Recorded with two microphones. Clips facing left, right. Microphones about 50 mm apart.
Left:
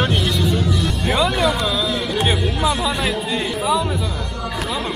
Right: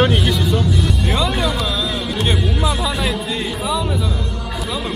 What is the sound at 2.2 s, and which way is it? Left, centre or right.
Speech, centre.